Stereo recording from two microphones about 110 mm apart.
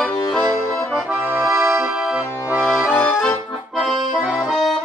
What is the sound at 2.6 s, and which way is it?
Accordion, 10° left (ahead or behind).